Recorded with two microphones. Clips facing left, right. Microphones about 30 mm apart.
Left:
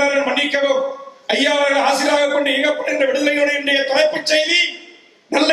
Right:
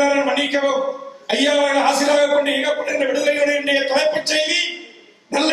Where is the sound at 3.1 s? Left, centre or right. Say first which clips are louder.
Left 1 dB; centre.